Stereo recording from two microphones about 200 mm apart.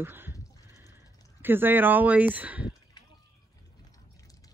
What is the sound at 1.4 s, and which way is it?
Speech, 10° right (ahead or behind).